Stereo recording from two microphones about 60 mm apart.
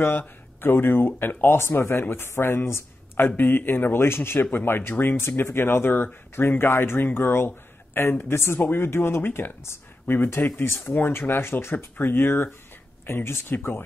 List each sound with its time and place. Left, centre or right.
0.0 s speech: left